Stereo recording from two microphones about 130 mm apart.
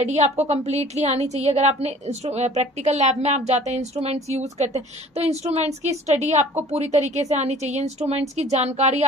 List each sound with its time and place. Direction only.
0.0 s a woman's voice: 60° right (ahead or behind)